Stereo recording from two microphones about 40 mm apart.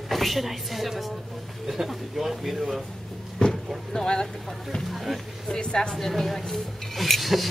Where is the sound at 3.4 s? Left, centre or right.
Left.